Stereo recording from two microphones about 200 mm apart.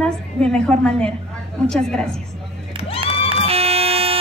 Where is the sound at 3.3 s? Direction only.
30° right (ahead or behind).